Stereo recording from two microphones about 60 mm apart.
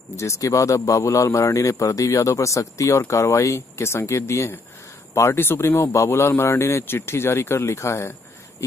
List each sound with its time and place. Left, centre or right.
0.2 s a man's voice: left